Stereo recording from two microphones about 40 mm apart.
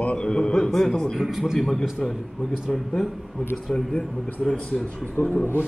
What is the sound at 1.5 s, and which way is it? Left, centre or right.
Speech, centre.